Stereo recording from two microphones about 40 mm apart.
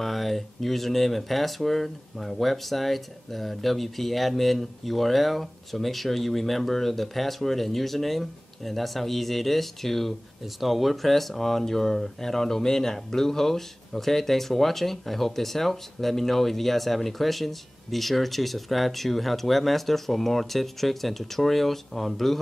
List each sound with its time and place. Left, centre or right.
0.0 s speech: centre